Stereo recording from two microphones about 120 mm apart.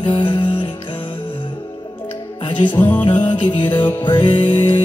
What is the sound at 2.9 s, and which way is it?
Music, 40° left (ahead or behind).